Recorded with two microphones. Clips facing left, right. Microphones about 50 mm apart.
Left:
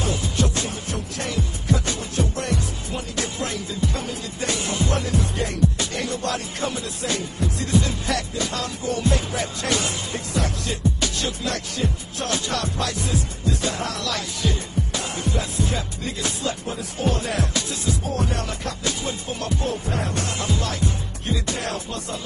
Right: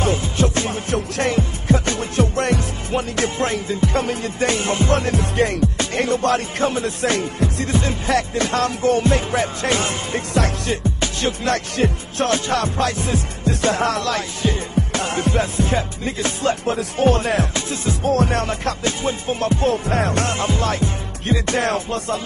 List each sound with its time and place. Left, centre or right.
0.0 s music: right
1.3 s music: right
7.6 s music: right
8.4 s music: right
12.4 s music: right
13.5 s music: right
14.4 s music: right
14.9 s music: right
18.0 s music: right
18.4 s music: right
19.6 s music: right
20.3 s music: right